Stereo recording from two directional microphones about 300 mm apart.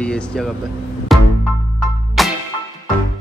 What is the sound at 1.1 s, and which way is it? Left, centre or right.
Music, centre.